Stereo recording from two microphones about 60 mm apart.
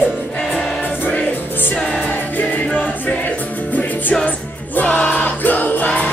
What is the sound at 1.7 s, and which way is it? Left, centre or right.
Music, centre.